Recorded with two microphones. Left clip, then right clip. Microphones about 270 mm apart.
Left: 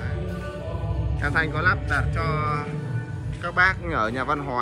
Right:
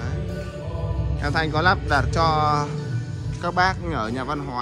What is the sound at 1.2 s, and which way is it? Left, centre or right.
Speech, centre.